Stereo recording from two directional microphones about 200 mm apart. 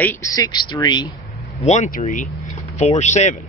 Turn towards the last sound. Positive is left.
turn(degrees=35)  # may be behind; listen again after turning